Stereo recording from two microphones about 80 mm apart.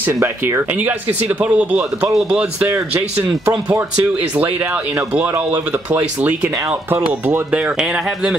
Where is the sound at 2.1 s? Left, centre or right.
Centre.